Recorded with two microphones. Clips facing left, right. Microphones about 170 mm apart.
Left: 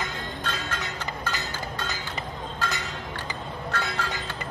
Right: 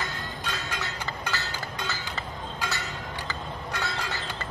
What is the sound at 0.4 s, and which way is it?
Music, 10° right (ahead or behind).